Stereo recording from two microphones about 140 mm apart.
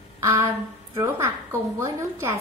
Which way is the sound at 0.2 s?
20° right (ahead or behind).